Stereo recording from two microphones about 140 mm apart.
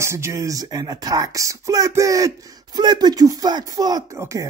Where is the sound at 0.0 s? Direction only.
20° right (ahead or behind).